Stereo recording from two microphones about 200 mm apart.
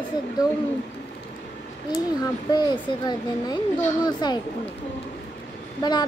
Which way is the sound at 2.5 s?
20° left (ahead or behind).